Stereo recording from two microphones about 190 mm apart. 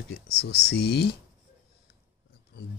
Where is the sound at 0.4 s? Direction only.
60° left (ahead or behind).